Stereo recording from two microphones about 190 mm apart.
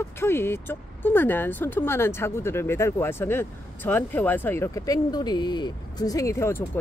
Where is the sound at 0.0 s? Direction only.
15° left (ahead or behind).